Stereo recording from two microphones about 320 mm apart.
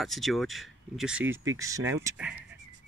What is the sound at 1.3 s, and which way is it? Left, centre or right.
Speech, right.